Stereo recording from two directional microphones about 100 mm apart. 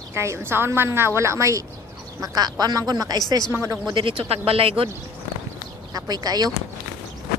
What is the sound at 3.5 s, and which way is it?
Speech, 30° right (ahead or behind).